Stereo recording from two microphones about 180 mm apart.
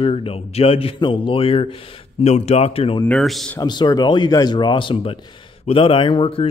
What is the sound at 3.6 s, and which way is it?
Speech, 25° left (ahead or behind).